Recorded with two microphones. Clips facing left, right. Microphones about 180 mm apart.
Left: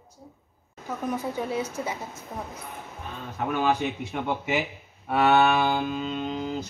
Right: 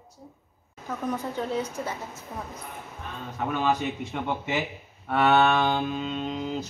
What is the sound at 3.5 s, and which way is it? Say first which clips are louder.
A man's voice: left 1 dB; 10° left (ahead or behind).